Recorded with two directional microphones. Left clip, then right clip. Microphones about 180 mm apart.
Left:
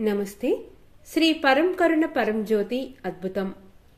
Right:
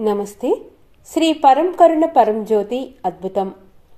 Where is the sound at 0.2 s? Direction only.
65° right (ahead or behind).